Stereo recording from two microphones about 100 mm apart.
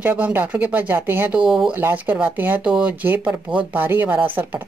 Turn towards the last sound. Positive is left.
turn(degrees=-20)  # may be behind; listen again after turning